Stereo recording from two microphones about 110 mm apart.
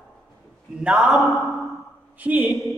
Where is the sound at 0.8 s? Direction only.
5° right (ahead or behind).